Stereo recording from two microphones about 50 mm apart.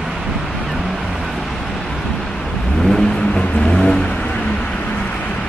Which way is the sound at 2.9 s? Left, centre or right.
Centre.